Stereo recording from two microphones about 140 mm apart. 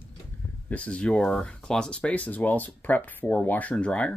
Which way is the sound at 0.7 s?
10° left (ahead or behind).